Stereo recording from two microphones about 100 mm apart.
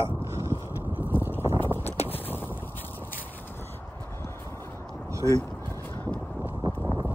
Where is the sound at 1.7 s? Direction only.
90° left.